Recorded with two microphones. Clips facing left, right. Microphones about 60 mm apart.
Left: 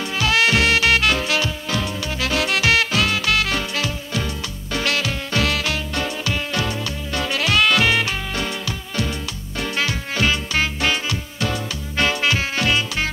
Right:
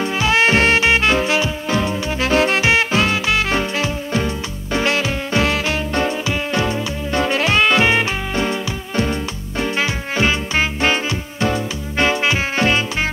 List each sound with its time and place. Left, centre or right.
0.0 s swing music: right